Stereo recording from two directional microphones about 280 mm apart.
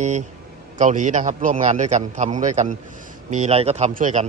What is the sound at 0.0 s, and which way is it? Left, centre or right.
Speech, right.